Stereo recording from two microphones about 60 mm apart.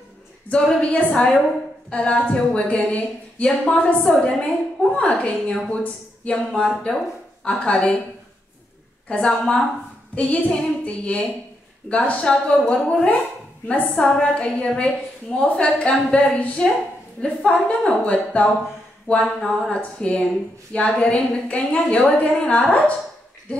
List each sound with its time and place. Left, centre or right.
0.5 s a woman's voice: centre
6.3 s a woman's voice: centre
9.1 s a woman's voice: left